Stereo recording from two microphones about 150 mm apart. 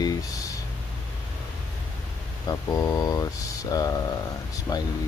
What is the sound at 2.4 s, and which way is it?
Speech, 25° left (ahead or behind).